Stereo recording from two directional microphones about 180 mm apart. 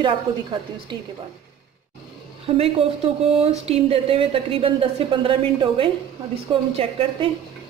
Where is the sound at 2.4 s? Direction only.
30° right (ahead or behind).